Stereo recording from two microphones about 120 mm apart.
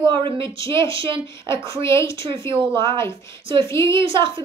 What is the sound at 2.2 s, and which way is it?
Speech, 45° right (ahead or behind).